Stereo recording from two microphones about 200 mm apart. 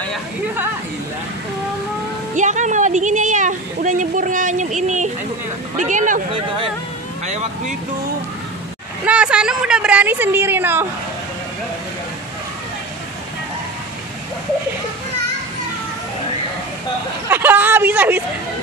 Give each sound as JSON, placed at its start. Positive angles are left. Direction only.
{"t": 2.3, "sound": "a woman's voice", "side_deg": -40}
{"t": 9.0, "sound": "a woman's voice", "side_deg": -5}
{"t": 17.3, "sound": "a woman's voice", "side_deg": -10}